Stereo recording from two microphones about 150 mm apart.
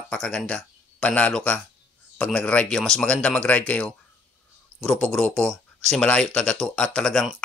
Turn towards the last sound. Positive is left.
turn(degrees=5)  # may be behind; listen again after turning